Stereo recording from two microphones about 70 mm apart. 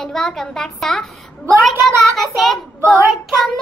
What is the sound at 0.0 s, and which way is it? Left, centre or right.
A woman's voice, centre.